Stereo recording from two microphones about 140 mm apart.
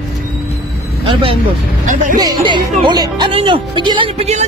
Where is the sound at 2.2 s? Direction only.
30° right (ahead or behind).